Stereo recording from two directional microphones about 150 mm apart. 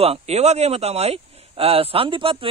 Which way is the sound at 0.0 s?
45° right (ahead or behind).